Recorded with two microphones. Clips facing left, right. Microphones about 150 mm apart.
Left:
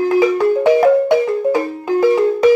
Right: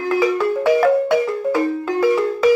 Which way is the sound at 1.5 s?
25° left (ahead or behind).